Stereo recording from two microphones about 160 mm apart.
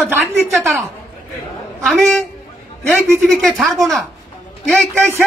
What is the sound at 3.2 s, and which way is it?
Speech, centre (ahead or behind).